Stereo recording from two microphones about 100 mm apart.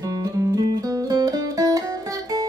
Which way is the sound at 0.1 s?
35° right (ahead or behind).